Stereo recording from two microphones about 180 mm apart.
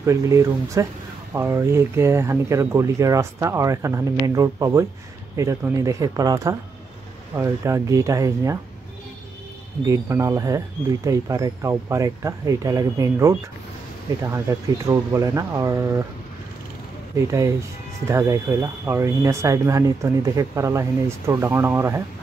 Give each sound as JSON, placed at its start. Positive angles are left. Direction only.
{"t": 0.0, "sound": "speech", "side_deg": -15}
{"t": 9.8, "sound": "speech", "side_deg": -15}
{"t": 18.0, "sound": "speech", "side_deg": -15}